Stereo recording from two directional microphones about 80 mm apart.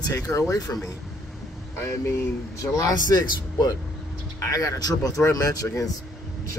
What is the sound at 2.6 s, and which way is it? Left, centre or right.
Speech, left.